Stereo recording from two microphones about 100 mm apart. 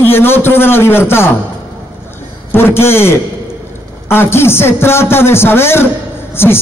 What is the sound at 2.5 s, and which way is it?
Speech, 25° left (ahead or behind).